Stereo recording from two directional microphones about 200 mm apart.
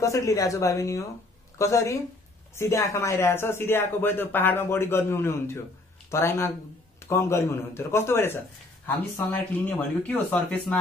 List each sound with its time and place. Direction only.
0.0 s speech: 15° left (ahead or behind)